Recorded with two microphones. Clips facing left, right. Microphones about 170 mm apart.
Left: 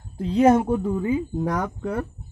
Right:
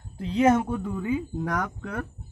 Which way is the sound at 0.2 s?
40° left (ahead or behind).